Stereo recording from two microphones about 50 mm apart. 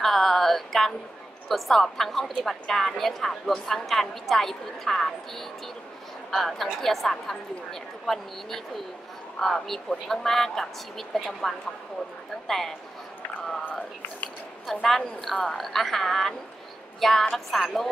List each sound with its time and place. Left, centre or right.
0.0 s music: centre
1.5 s a woman's voice: centre
6.3 s a woman's voice: centre
9.4 s a woman's voice: centre
13.7 s speech: left
14.7 s a woman's voice: centre